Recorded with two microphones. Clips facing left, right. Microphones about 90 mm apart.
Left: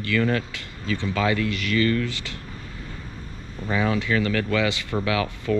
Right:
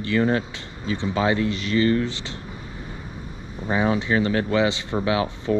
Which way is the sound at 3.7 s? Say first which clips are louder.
Right 2 dB; 25° right (ahead or behind).